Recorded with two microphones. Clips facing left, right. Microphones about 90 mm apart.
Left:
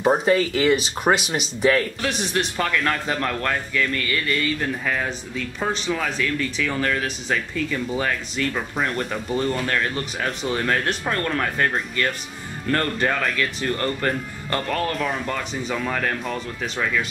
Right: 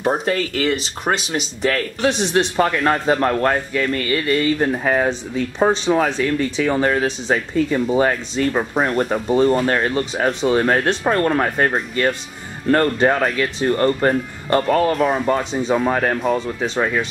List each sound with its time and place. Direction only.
0.0 s speech: 5° left (ahead or behind)
2.0 s a man's voice: 20° right (ahead or behind)
15.5 s a man's voice: 35° right (ahead or behind)
16.3 s a man's voice: 30° right (ahead or behind)